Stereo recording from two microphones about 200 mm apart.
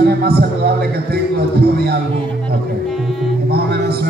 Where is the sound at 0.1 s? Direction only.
55° right (ahead or behind).